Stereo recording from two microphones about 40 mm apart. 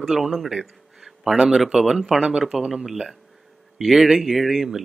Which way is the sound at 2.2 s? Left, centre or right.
Right.